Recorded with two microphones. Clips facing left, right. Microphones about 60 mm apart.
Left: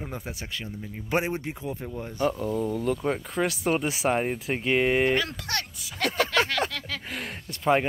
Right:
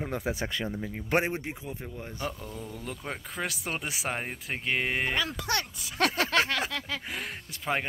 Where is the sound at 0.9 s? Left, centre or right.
Right.